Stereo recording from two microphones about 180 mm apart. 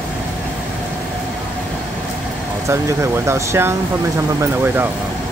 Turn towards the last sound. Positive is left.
turn(degrees=-15)  # may be behind; listen again after turning